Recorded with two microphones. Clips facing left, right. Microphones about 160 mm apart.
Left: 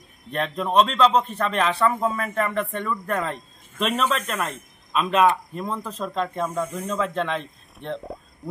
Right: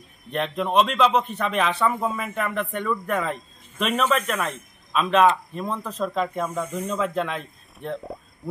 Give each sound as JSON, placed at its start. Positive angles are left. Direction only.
{"t": 0.3, "sound": "a man's voice", "side_deg": 0}